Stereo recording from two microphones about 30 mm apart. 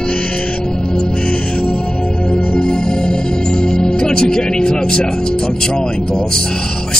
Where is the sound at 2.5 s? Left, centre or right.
Left.